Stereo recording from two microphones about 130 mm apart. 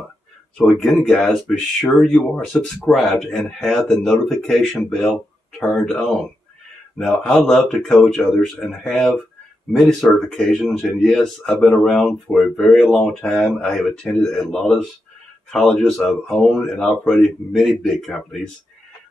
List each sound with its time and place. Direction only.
0.6 s speech: 5° left (ahead or behind)